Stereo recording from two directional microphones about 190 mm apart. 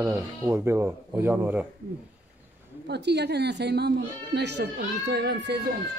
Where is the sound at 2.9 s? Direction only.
60° right (ahead or behind).